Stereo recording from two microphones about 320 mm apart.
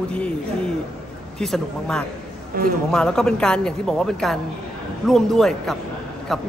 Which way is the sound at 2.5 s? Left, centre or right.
Right.